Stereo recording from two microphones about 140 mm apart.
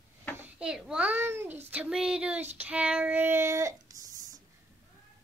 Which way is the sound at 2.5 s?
10° right (ahead or behind).